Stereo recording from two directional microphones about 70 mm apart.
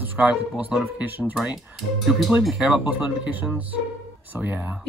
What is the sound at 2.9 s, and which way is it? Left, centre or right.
Speech, right.